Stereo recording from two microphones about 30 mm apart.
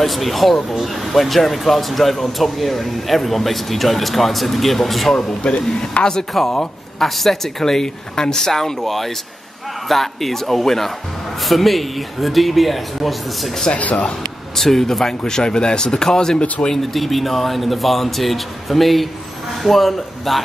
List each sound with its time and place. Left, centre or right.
0.0 s speech: centre
6.0 s speech: left
6.4 s speech: centre
7.6 s speech: centre
13.7 s speech: left
14.5 s speech: centre
16.6 s speech: left
16.9 s speech: centre